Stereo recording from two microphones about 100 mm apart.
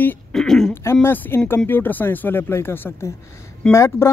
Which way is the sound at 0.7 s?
25° left (ahead or behind).